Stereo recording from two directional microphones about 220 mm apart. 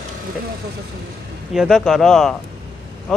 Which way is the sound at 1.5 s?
Centre (ahead or behind).